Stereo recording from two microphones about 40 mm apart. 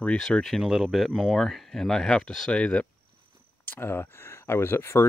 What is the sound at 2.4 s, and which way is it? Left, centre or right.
Speech, left.